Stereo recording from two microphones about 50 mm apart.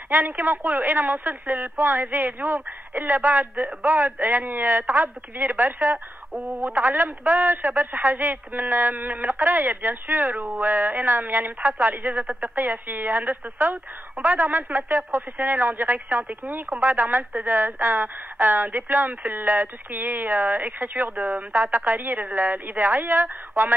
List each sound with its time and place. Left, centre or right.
0.1 s a man's voice: right
14.8 s a man's voice: right